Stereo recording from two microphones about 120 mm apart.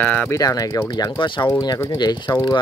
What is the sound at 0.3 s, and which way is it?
Speech, 30° left (ahead or behind).